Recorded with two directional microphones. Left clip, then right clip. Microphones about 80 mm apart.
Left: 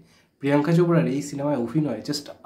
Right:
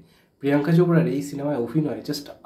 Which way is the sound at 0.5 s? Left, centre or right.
Left.